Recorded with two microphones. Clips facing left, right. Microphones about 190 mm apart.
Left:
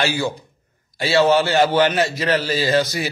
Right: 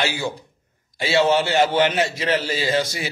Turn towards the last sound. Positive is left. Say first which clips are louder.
# left 3 dB
turn(degrees=-20)  # may be behind; listen again after turning